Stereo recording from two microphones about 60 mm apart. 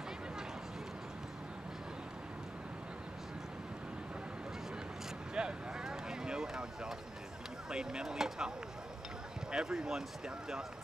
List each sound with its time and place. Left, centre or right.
5.3 s vehicle: centre
7.7 s speech: centre
9.5 s speech: centre